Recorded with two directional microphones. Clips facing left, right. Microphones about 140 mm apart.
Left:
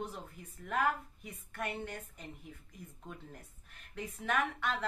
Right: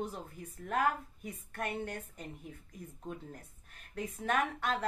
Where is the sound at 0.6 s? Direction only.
45° right (ahead or behind).